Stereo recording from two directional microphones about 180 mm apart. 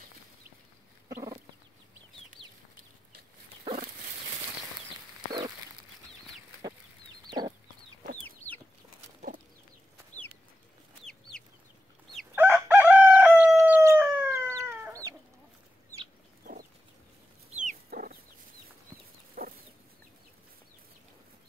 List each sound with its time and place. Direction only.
2.4 s chicken: centre (ahead or behind)
7.2 s chicken: 25° right (ahead or behind)
10.1 s bird: 40° left (ahead or behind)
12.4 s crowing: 10° right (ahead or behind)
14.3 s chicken: 15° right (ahead or behind)
17.6 s chicken: 45° right (ahead or behind)
19.4 s chicken: 50° right (ahead or behind)